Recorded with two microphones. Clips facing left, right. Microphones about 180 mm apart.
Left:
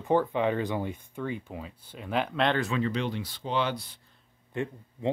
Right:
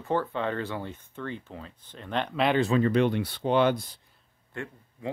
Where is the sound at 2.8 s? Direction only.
55° right (ahead or behind).